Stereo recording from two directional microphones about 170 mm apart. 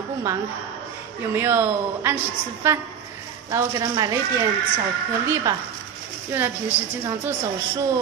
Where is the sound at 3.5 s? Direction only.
20° right (ahead or behind).